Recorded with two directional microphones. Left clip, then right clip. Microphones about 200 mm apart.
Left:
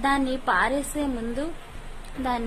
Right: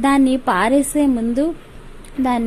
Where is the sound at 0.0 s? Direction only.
30° right (ahead or behind).